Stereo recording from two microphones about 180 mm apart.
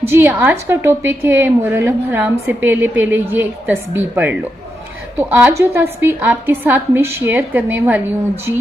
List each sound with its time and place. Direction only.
0.1 s a woman's voice: 10° right (ahead or behind)